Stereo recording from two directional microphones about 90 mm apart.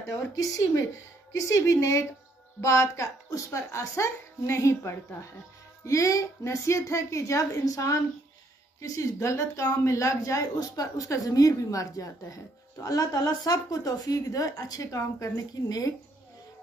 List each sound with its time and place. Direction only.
1.3 s speech: 35° left (ahead or behind)